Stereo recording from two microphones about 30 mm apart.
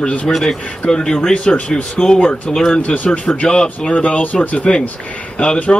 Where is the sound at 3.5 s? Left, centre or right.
Left.